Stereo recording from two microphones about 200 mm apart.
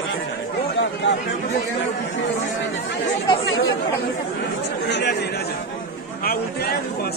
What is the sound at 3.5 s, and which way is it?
Speech, 60° left (ahead or behind).